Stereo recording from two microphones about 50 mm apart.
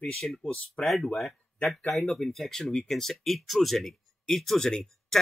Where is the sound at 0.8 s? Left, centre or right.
Left.